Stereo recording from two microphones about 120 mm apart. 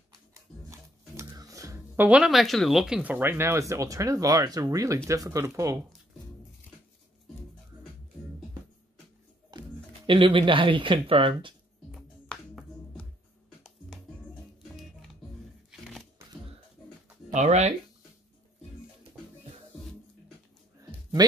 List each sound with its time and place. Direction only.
0.3 s music: 25° right (ahead or behind)
2.0 s speech: 10° right (ahead or behind)
3.0 s speech: 15° right (ahead or behind)
9.5 s speech: 40° right (ahead or behind)
17.3 s speech: 75° right (ahead or behind)